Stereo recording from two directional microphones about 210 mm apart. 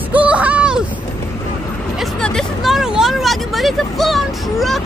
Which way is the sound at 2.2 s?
Centre (ahead or behind).